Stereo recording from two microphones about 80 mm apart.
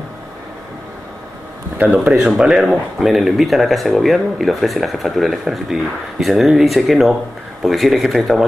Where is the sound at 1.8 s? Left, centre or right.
Centre.